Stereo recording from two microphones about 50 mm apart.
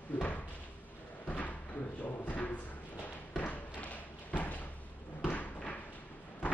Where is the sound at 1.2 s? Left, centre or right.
Left.